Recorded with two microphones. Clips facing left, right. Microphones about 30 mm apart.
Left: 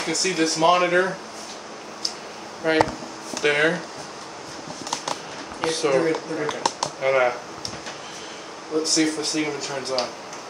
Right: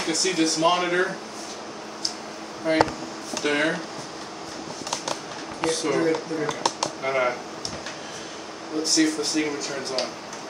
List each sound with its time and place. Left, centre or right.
0.0 s speech: centre
2.6 s speech: left
5.7 s speech: centre
8.8 s speech: centre